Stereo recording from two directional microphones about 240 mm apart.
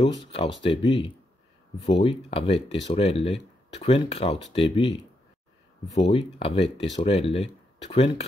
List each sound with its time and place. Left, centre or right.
0.0 s speech: left
6.0 s speech: left